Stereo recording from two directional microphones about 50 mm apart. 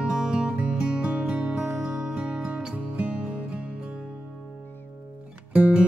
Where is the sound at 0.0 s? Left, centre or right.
Centre.